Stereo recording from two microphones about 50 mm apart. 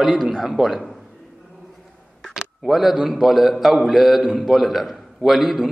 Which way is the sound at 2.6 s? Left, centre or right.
Centre.